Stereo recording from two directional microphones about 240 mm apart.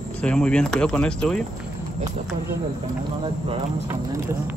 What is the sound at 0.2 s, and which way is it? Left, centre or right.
Speech, centre.